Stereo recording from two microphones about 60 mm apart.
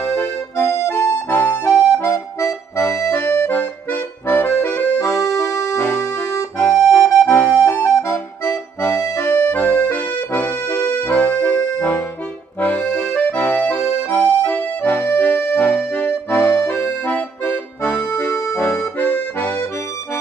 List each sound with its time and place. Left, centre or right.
0.2 s music: left
4.3 s accordion: left
5.0 s music: left
5.8 s music: left
9.4 s accordion: left
13.1 s accordion: left
14.1 s music: left
16.6 s accordion: left